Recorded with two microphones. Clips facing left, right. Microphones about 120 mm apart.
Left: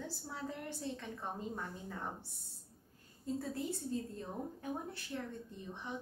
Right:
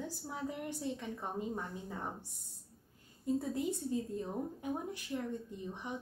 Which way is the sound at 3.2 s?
15° right (ahead or behind).